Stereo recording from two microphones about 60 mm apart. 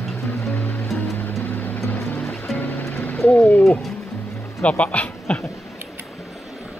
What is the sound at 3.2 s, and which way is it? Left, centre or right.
Speech, left.